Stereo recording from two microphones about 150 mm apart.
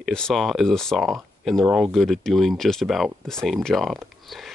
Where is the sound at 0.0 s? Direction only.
5° left (ahead or behind).